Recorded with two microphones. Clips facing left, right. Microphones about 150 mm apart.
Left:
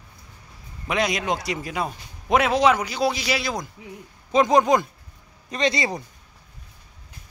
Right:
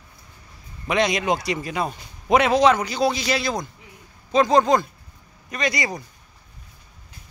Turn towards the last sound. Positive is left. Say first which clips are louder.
# left 2 dB
turn(degrees=25)  # may be behind; listen again after turning